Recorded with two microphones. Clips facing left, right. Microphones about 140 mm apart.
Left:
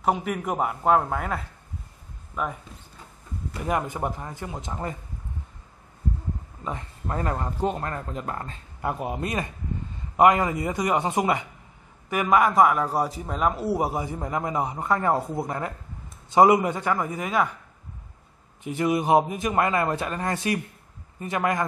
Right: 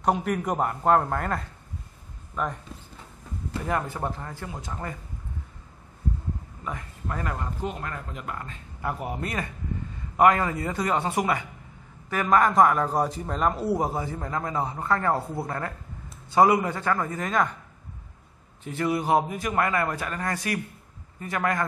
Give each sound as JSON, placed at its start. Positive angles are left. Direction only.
{"t": 0.0, "sound": "a man's voice", "side_deg": 5}
{"t": 3.6, "sound": "a man's voice", "side_deg": 15}
{"t": 6.6, "sound": "speech", "side_deg": 25}
{"t": 9.0, "sound": "a man's voice", "side_deg": 20}
{"t": 18.6, "sound": "a man's voice", "side_deg": 15}